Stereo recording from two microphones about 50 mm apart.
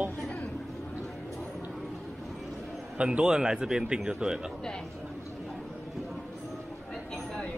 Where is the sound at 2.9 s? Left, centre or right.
Centre.